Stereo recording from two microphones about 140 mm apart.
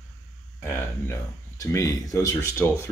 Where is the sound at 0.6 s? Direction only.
20° left (ahead or behind).